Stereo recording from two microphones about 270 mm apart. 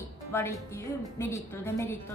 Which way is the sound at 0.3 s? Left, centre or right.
Centre.